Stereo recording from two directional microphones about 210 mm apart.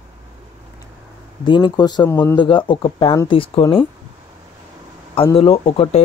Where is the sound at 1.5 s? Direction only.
20° left (ahead or behind).